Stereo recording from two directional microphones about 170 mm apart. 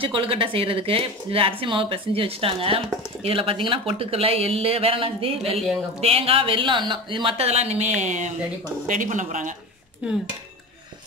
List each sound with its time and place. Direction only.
0.0 s a woman's voice: 30° right (ahead or behind); by 9.5 s 50° right (ahead or behind)
10.0 s speech: 5° right (ahead or behind)